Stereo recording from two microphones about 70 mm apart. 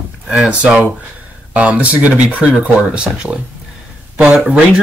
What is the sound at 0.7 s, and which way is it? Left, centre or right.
Speech, centre.